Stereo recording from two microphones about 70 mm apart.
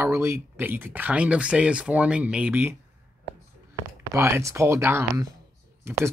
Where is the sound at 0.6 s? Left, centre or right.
Right.